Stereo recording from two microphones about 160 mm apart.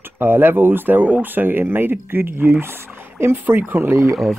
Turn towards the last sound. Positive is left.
turn(degrees=-15)  # may be behind; listen again after turning